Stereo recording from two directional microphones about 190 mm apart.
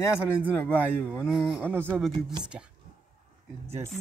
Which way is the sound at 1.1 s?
5° right (ahead or behind).